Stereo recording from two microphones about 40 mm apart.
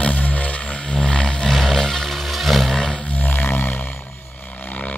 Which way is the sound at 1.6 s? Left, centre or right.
Centre.